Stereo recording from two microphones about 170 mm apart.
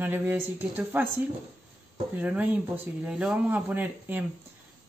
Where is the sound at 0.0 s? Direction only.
10° right (ahead or behind).